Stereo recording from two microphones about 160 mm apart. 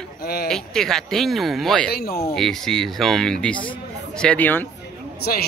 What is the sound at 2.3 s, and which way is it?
Speech, centre (ahead or behind).